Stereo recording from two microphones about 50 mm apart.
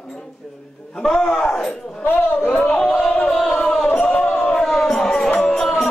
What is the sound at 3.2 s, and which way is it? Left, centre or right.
Music, centre.